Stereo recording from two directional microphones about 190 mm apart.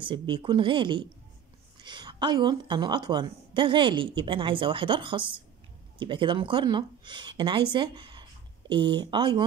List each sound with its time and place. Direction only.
0.0 s a woman's voice: 25° right (ahead or behind)